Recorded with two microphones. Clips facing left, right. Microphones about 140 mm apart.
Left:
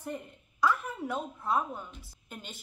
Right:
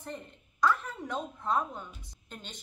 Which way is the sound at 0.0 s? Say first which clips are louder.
Left 3 dB; 10° left (ahead or behind).